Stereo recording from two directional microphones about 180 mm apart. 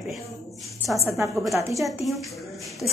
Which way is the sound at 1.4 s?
Centre (ahead or behind).